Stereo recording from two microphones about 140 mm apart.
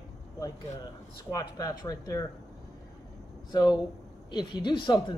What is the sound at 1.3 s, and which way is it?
Speech, 25° left (ahead or behind).